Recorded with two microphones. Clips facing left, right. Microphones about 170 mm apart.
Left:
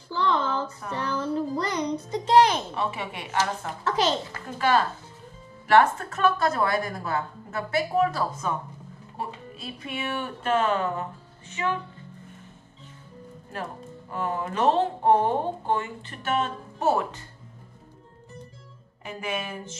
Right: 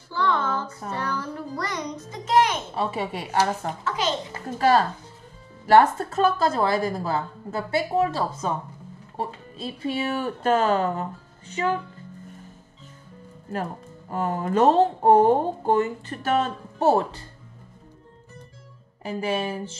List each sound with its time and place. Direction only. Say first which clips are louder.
0.8 s a sound: right 1 dB; 35° right (ahead or behind)
1.1 s music: left 4 dB; 25° left (ahead or behind)
2.7 s speech: right 3 dB; 35° right (ahead or behind)
3.8 s a child's voice: left 4 dB; 40° left (ahead or behind)
4.5 s a woman's voice: right 3 dB; 35° right (ahead or behind)
14.1 s speech: right 5 dB; 40° right (ahead or behind)
19.0 s speech: right 6 dB; 35° right (ahead or behind)